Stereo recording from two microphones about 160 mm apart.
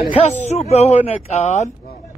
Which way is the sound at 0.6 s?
40° left (ahead or behind).